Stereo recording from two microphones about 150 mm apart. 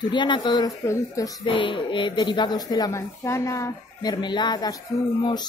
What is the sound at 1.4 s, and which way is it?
A woman's voice, 35° left (ahead or behind).